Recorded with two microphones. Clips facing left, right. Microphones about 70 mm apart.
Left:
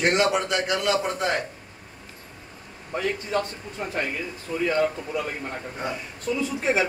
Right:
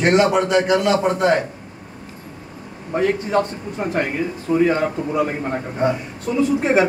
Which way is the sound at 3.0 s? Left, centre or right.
Right.